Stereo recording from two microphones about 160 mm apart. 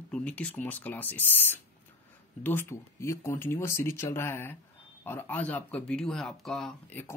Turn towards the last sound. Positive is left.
turn(degrees=5)  # may be behind; listen again after turning